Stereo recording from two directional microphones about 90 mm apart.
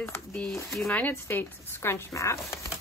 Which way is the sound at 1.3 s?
25° left (ahead or behind).